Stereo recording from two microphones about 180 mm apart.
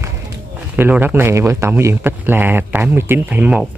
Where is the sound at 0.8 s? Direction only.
10° right (ahead or behind).